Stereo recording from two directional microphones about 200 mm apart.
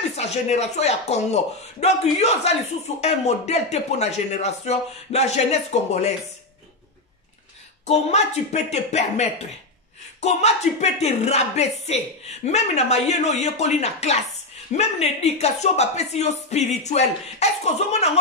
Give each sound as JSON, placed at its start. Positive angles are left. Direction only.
{"t": 0.1, "sound": "speech", "side_deg": 35}
{"t": 7.8, "sound": "speech", "side_deg": 35}